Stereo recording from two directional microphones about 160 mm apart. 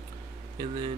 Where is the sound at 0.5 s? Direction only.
30° right (ahead or behind).